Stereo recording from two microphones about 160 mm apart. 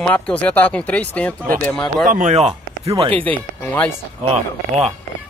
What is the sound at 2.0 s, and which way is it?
Speech, 50° right (ahead or behind).